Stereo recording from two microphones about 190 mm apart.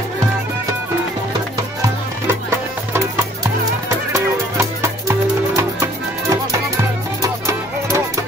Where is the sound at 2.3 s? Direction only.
15° right (ahead or behind).